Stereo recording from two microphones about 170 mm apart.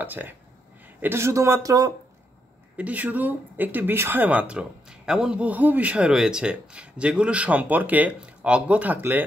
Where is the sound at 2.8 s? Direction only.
10° right (ahead or behind).